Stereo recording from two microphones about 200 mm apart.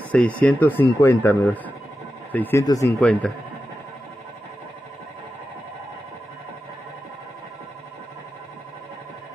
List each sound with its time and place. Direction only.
0.1 s speech: 5° left (ahead or behind)
3.0 s speech: 5° left (ahead or behind)